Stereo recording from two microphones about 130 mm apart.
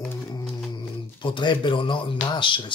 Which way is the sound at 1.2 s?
40° left (ahead or behind).